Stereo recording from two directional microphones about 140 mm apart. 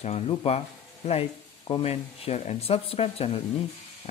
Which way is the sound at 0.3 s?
40° left (ahead or behind).